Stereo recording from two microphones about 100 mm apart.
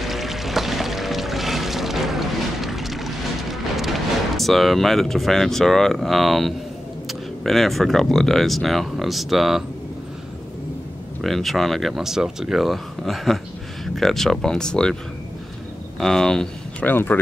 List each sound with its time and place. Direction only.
0.0 s music: centre (ahead or behind)
7.1 s speech: centre (ahead or behind)
11.1 s speech: centre (ahead or behind)
16.0 s speech: 5° left (ahead or behind)
16.8 s speech: 20° left (ahead or behind)